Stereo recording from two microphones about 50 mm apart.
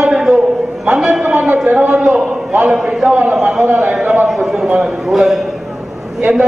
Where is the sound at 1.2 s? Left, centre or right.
Right.